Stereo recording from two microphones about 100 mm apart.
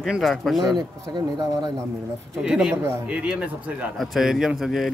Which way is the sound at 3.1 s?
10° right (ahead or behind).